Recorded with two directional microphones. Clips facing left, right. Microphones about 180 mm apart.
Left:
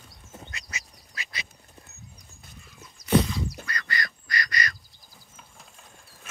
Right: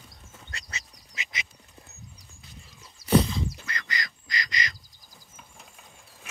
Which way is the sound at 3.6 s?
20° right (ahead or behind).